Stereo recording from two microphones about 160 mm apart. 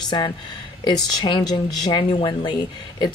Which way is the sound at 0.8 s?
25° left (ahead or behind).